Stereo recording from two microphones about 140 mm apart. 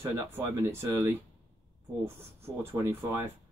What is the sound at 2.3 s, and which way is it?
Speech, 20° right (ahead or behind).